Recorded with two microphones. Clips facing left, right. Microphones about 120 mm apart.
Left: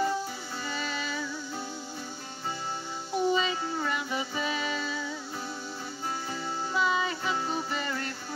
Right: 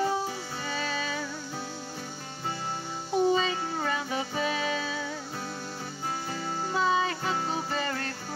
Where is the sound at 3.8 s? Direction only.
50° right (ahead or behind).